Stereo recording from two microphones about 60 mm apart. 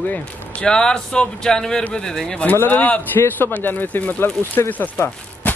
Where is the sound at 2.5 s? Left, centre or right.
Left.